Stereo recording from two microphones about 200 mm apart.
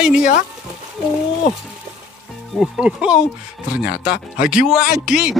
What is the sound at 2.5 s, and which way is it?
Speech, 5° right (ahead or behind).